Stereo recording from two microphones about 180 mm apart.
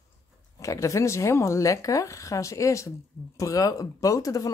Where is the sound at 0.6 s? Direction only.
15° left (ahead or behind).